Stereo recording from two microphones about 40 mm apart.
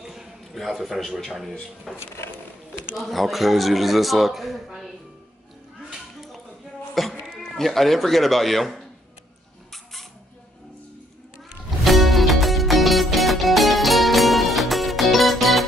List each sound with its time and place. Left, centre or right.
0.0 s a sound: centre
1.2 s a man's voice: centre
2.0 s speech: left
3.0 s a man's voice: centre
7.0 s a sound: centre
7.3 s a man's voice: centre
11.8 s music: centre